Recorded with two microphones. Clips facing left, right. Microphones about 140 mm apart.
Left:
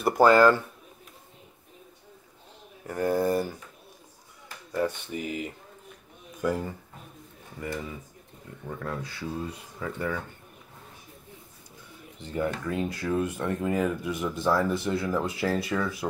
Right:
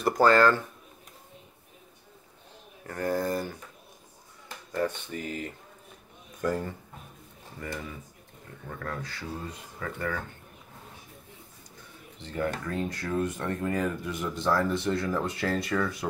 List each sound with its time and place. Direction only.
0.0 s speech: 10° left (ahead or behind)
2.9 s speech: 15° left (ahead or behind)
4.7 s speech: 10° left (ahead or behind)
12.2 s speech: 15° left (ahead or behind)